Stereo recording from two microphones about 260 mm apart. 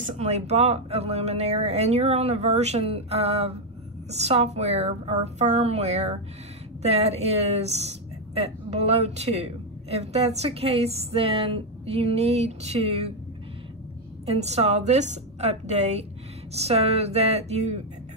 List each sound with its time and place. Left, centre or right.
0.0 s a woman's voice: right
14.2 s a woman's voice: right